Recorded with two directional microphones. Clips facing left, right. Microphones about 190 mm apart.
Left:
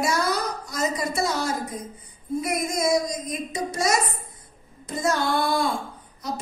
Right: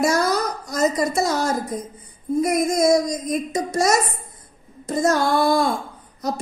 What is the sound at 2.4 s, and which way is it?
A woman's voice, 45° right (ahead or behind).